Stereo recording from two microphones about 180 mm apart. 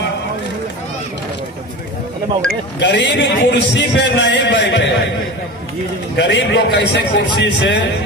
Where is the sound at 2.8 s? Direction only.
80° left.